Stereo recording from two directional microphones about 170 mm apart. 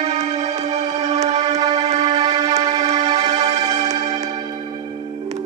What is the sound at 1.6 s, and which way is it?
Music, 25° right (ahead or behind).